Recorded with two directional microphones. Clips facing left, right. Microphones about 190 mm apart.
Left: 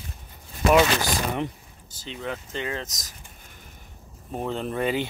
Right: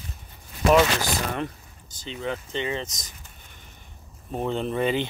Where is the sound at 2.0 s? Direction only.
Centre (ahead or behind).